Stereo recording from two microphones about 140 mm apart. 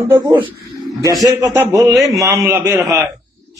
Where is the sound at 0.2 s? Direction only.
35° right (ahead or behind).